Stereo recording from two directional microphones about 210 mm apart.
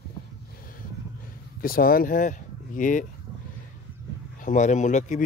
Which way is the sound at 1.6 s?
45° left (ahead or behind).